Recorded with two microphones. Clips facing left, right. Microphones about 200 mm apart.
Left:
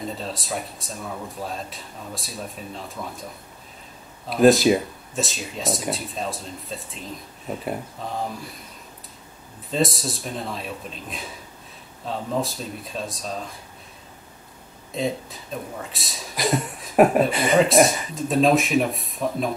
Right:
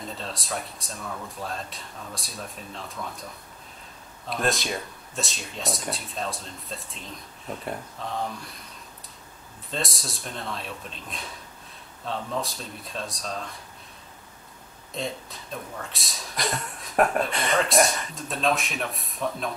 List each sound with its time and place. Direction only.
0.0 s speech: centre (ahead or behind)
1.0 s speech: 15° left (ahead or behind)
1.4 s speech: centre (ahead or behind)
4.3 s speech: 5° left (ahead or behind)
9.7 s speech: centre (ahead or behind)
12.4 s speech: centre (ahead or behind)
15.0 s speech: centre (ahead or behind)